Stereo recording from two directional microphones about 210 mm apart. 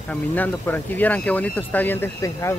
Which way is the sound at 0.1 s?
10° left (ahead or behind).